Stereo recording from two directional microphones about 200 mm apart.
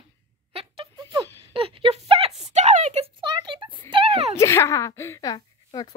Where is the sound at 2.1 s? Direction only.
30° right (ahead or behind).